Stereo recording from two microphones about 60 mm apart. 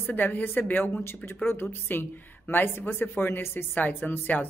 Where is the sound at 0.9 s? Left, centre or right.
Left.